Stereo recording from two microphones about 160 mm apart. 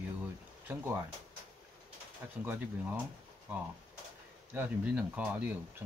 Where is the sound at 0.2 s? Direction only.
15° right (ahead or behind).